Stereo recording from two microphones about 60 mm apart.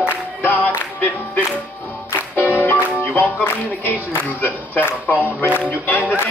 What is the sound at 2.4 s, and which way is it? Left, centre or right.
Music, left.